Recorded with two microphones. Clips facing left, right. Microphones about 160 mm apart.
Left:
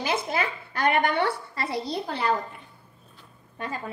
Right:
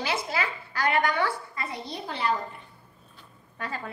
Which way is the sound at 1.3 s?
75° left (ahead or behind).